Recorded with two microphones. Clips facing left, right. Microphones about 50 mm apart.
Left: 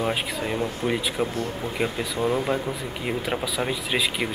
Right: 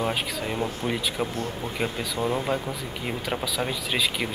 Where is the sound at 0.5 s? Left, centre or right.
Centre.